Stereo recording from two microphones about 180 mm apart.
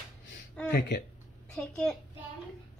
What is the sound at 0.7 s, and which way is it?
Speech, 65° left (ahead or behind).